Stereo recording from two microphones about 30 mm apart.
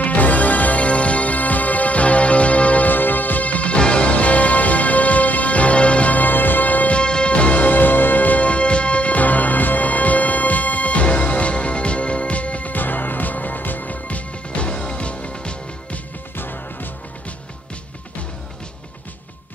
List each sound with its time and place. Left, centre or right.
0.0 s music: left
0.7 s music: left
2.9 s music: left
6.1 s music: left
6.9 s music: left
7.6 s music: left
8.4 s music: left
12.7 s music: left
14.0 s music: left